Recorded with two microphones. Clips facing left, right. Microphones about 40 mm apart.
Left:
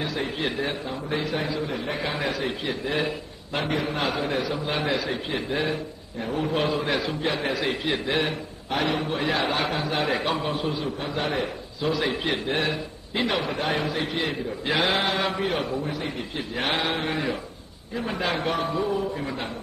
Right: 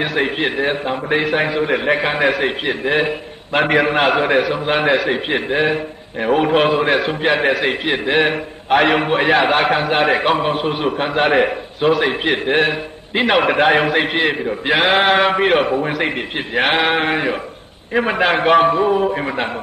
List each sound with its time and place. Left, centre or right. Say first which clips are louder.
0.0 s a man's voice: right 9 dB; right
3.6 s a man's voice: right 12 dB; right